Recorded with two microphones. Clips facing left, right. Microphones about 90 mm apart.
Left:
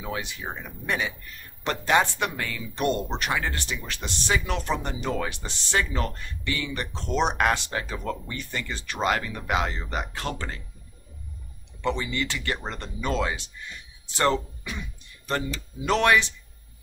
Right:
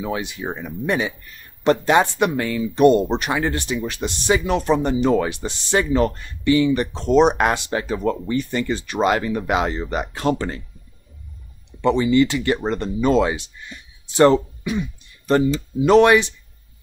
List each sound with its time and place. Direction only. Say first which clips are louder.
0.0 s speech: right 7 dB; 25° right (ahead or behind)
11.8 s speech: right 12 dB; 20° right (ahead or behind)